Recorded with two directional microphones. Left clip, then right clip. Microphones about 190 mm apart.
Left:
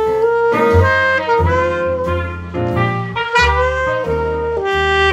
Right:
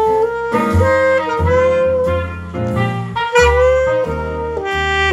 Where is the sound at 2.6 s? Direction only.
20° right (ahead or behind).